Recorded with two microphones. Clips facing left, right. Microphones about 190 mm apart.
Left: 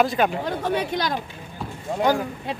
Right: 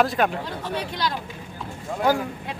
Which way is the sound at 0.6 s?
50° left (ahead or behind).